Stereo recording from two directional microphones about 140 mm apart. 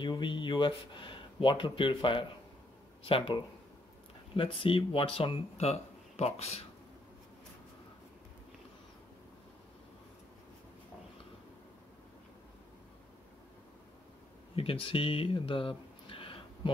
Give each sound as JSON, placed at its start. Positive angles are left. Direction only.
{"t": 0.0, "sound": "speech", "side_deg": 35}
{"t": 14.5, "sound": "speech", "side_deg": 40}